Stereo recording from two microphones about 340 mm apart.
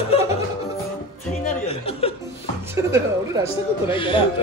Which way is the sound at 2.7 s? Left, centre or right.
Centre.